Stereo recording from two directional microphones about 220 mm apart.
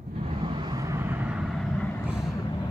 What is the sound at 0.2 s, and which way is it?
Vehicle, 20° right (ahead or behind).